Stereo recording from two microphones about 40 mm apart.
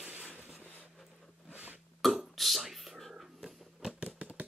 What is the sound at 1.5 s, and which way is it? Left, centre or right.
Burping, right.